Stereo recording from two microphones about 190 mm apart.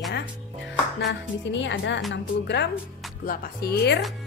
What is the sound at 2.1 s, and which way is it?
Speech, 65° left (ahead or behind).